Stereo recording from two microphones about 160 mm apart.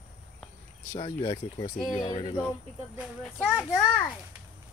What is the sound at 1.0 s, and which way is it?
Speech, 30° left (ahead or behind).